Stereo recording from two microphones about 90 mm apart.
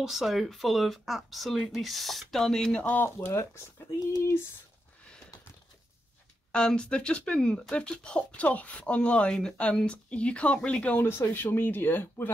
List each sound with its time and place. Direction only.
0.0 s speech: 5° right (ahead or behind)
2.8 s speech: 20° left (ahead or behind)
6.5 s speech: 10° left (ahead or behind)
11.1 s speech: 25° left (ahead or behind)